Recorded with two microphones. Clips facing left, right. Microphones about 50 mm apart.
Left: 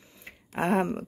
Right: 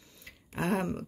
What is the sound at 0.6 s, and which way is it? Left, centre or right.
Speech, left.